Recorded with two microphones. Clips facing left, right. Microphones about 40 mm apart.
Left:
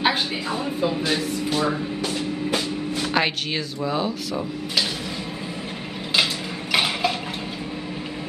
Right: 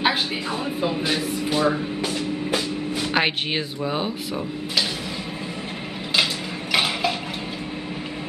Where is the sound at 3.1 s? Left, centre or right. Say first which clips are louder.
Right 1 dB; right.